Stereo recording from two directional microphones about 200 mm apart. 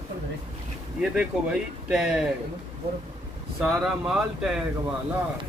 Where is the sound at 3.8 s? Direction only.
5° right (ahead or behind).